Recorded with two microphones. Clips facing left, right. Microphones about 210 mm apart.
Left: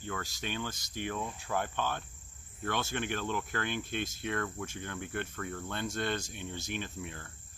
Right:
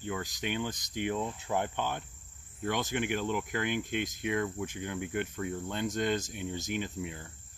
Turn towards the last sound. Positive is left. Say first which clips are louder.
# right 4 dB
turn(degrees=-15)  # may be behind; listen again after turning